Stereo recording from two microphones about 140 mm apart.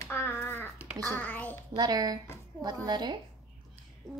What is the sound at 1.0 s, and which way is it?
Speech, 15° left (ahead or behind).